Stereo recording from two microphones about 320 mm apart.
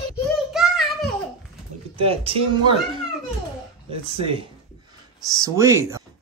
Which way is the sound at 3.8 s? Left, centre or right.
Centre.